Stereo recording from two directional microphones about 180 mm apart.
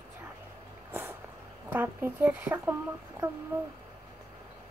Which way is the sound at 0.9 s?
10° right (ahead or behind).